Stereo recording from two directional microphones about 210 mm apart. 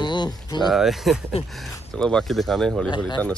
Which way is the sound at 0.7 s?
Centre (ahead or behind).